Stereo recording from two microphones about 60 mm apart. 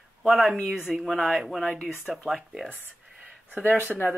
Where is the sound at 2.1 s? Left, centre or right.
Centre.